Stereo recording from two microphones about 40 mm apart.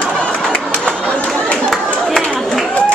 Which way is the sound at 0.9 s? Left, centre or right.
Left.